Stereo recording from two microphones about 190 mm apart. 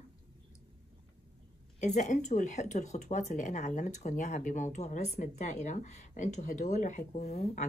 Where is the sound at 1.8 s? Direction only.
40° left (ahead or behind).